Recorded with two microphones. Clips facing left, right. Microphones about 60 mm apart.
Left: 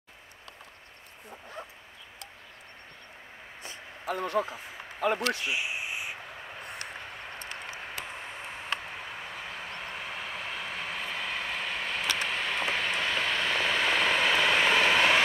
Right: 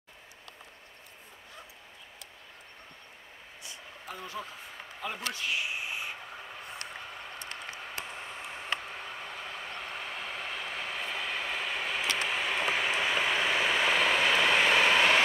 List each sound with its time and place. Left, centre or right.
4.0 s speech: left
5.4 s a sound: centre
8.9 s vehicle: centre